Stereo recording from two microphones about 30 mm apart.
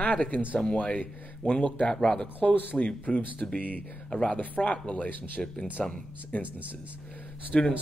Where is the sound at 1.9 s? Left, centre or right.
Centre.